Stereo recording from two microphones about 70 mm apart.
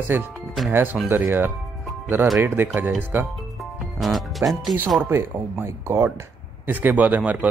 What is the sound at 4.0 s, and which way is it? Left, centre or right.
Speech, centre.